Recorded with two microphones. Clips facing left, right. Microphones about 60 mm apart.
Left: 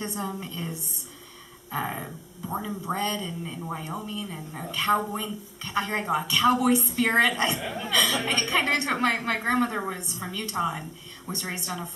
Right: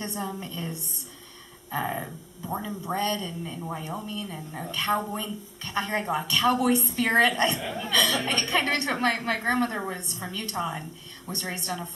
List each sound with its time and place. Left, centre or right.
0.0 s a woman's voice: centre